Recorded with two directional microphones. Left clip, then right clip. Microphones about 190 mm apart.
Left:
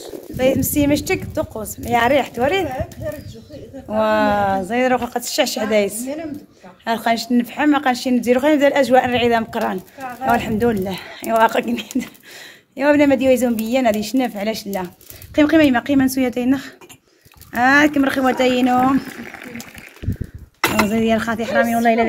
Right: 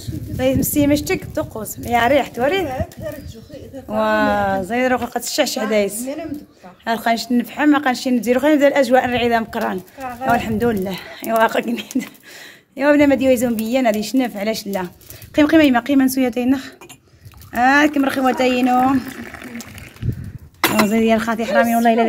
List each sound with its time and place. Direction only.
0.4 s speech: 5° left (ahead or behind)
3.0 s speech: 35° right (ahead or behind)
3.8 s speech: centre (ahead or behind)
19.0 s speech: 5° right (ahead or behind)
20.6 s speech: 15° right (ahead or behind)